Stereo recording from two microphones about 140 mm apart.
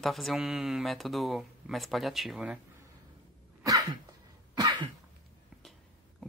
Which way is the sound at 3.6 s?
25° right (ahead or behind).